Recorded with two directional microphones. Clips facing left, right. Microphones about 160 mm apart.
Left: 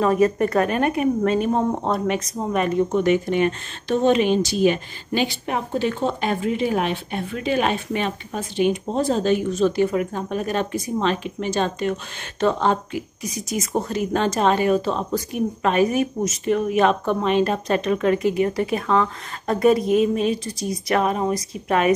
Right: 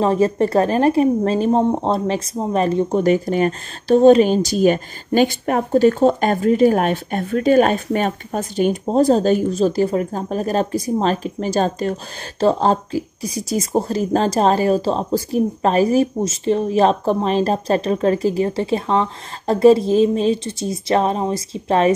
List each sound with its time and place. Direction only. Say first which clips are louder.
0.0 s a woman's voice: right 2 dB; 30° right (ahead or behind)